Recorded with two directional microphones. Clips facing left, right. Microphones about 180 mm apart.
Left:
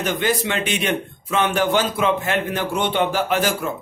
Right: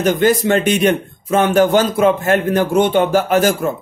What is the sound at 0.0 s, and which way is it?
A man's voice, 45° right (ahead or behind).